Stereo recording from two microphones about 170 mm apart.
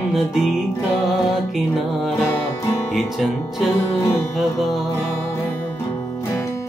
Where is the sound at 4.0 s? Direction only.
15° left (ahead or behind).